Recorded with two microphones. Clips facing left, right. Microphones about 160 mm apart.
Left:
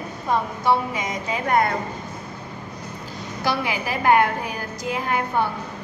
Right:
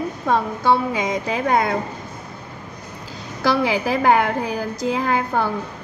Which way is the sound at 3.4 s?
90° right.